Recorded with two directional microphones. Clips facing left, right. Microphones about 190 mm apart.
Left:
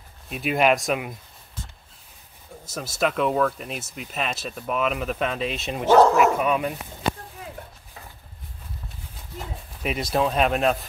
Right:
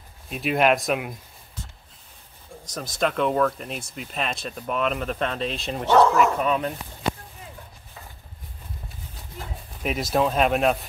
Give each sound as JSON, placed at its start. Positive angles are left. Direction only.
{"t": 0.3, "sound": "speech", "side_deg": 0}
{"t": 2.6, "sound": "speech", "side_deg": 5}
{"t": 9.8, "sound": "speech", "side_deg": 0}